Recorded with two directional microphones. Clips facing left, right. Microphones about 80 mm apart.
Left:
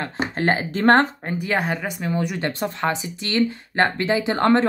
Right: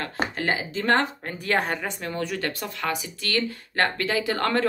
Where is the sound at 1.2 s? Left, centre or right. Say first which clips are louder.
Left 2 dB; centre.